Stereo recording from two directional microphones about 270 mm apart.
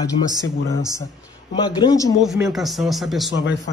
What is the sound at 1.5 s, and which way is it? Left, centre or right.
Speech, centre.